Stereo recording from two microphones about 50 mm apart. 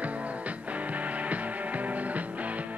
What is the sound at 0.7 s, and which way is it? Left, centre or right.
Music, right.